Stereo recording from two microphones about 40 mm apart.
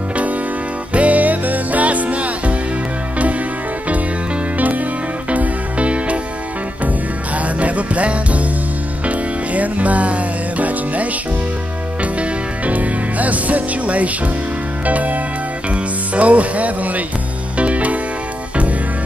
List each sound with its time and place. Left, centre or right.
0.9 s music: right
4.6 s music: right
7.4 s music: right